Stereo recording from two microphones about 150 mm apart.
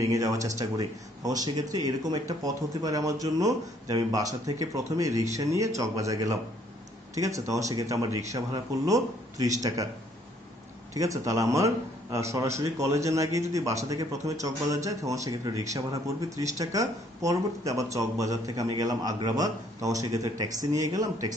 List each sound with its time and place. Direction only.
0.0 s speech: 20° right (ahead or behind)
11.0 s speech: 20° right (ahead or behind)